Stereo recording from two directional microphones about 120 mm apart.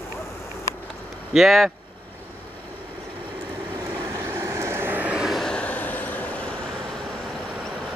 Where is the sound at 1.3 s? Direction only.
Centre (ahead or behind).